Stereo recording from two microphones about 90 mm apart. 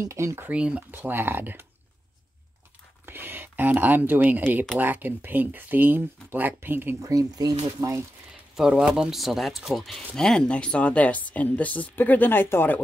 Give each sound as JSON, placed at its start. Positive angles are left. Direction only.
{"t": 0.0, "sound": "speech", "side_deg": -35}
{"t": 0.5, "sound": "speech", "side_deg": -15}
{"t": 3.1, "sound": "speech", "side_deg": -20}
{"t": 7.0, "sound": "speech", "side_deg": -40}
{"t": 8.5, "sound": "speech", "side_deg": -5}